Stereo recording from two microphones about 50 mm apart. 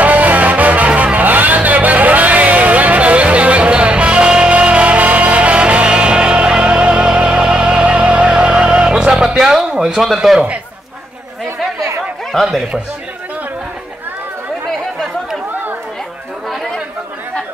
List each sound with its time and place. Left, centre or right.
0.0 s music: right; by 9.7 s centre
9.8 s speech: centre
12.3 s speech: centre